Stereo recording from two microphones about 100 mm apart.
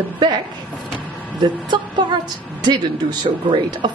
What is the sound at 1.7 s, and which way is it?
A woman's voice, 50° right (ahead or behind).